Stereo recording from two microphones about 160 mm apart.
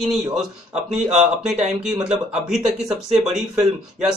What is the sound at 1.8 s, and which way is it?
Speech, 5° right (ahead or behind).